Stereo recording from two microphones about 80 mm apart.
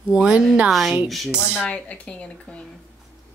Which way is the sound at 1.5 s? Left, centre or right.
Left.